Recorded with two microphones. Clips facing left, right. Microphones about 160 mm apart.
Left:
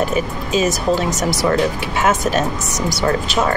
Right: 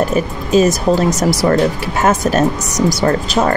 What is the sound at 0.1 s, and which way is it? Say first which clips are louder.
Speech: right 5 dB; 40° right (ahead or behind).